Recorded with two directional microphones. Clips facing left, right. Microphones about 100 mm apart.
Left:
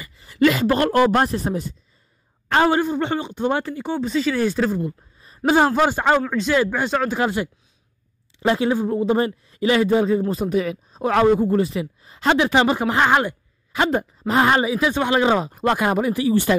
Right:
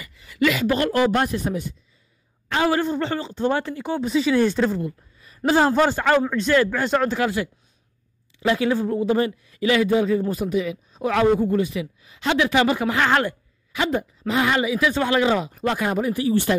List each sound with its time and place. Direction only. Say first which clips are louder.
0.0 s a woman's voice: left 4 dB; 35° left (ahead or behind)
1.2 s a woman's voice: left 2 dB; 35° left (ahead or behind)
2.4 s a sound: left 4 dB; 50° left (ahead or behind)
3.0 s a man's voice: left 1 dB; 20° left (ahead or behind)
3.7 s speech: even; 5° right (ahead or behind)
4.8 s a sound: left 2 dB; 30° left (ahead or behind)
5.6 s a man's voice: even; 15° left (ahead or behind); by 10.2 s 30° left (ahead or behind)
10.5 s a woman's voice: left 2 dB; 45° left (ahead or behind); by 13.4 s 15° left (ahead or behind)
13.7 s a sound: left 4 dB; 35° left (ahead or behind)
13.9 s a woman's voice: left 3 dB; 40° left (ahead or behind)
15.6 s speech: left 3 dB; 65° left (ahead or behind); by 16.3 s 85° left